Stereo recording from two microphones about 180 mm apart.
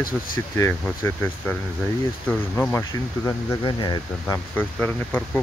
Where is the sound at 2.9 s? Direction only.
20° left (ahead or behind).